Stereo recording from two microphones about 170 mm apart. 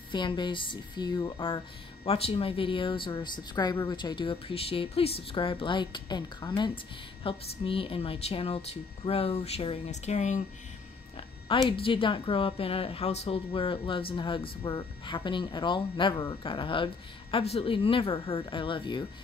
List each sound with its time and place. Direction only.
0.1 s a woman's voice: 25° left (ahead or behind); by 10.4 s 45° left (ahead or behind)
11.1 s a sound: 30° left (ahead or behind)
11.7 s a woman's voice: 30° left (ahead or behind)